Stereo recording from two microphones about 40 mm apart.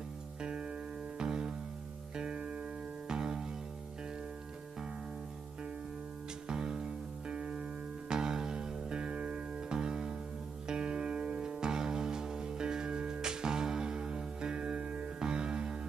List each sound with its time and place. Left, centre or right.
0.4 s music: right
6.4 s music: centre
8.1 s music: centre